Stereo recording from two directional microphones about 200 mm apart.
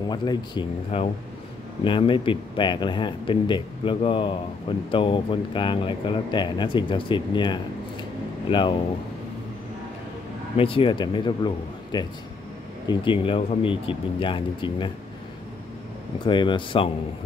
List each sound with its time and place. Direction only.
0.1 s speech: 20° left (ahead or behind)
10.6 s speech: 25° left (ahead or behind)
16.3 s speech: 25° left (ahead or behind)